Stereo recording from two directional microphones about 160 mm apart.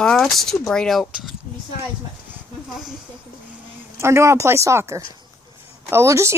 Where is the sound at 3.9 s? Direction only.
15° right (ahead or behind).